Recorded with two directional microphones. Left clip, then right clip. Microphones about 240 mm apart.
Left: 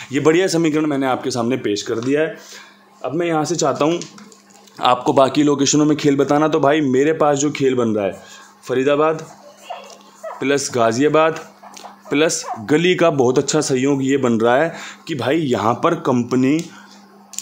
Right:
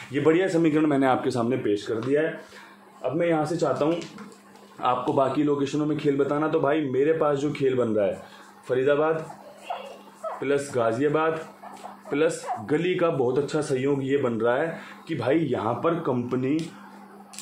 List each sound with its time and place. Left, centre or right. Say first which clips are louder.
0.1 s speech: left 6 dB; left
0.7 s speech: left 3 dB; centre
1.5 s speech: left 5 dB; left
10.4 s speech: left 8 dB; left